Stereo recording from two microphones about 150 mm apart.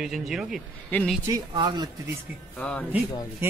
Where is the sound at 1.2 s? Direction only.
25° right (ahead or behind).